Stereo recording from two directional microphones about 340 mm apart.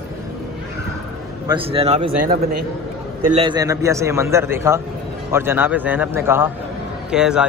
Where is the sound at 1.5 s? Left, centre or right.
Centre.